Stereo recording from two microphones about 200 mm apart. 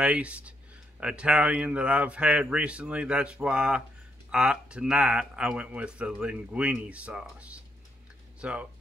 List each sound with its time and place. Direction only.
0.0 s speech: 5° right (ahead or behind)